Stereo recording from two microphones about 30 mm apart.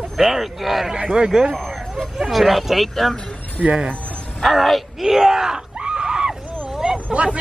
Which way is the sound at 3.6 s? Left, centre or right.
Right.